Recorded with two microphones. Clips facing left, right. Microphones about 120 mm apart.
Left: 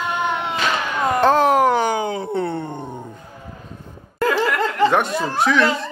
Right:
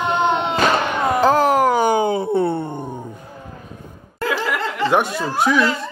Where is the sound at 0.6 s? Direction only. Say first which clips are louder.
Right 6 dB; 40° right (ahead or behind).